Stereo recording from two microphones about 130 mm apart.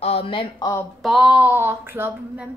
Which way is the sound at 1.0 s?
5° right (ahead or behind).